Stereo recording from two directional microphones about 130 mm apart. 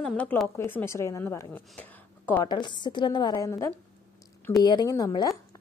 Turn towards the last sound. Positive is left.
turn(degrees=30)  # may be behind; listen again after turning